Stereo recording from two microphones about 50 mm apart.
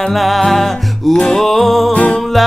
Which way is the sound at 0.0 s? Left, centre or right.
Centre.